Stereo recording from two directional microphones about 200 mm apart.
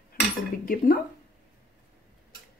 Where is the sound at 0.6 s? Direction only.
45° left (ahead or behind).